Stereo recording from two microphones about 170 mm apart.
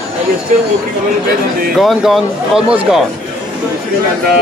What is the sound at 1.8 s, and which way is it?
Speech, centre (ahead or behind).